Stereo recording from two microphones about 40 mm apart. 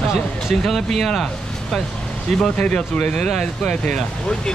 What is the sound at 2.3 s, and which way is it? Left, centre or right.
Speech, centre.